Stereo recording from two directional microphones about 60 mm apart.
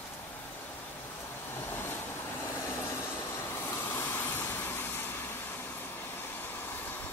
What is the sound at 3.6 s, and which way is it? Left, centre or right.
Vehicle, left.